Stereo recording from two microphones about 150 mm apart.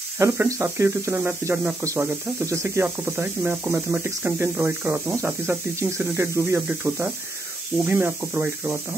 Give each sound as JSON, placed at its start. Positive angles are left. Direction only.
{"t": 0.2, "sound": "speech", "side_deg": -15}